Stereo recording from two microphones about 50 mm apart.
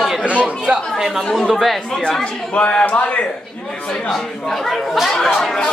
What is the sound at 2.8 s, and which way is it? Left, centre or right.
Speech, left.